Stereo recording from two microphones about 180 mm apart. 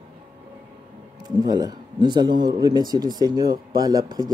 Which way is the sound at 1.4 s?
20° right (ahead or behind).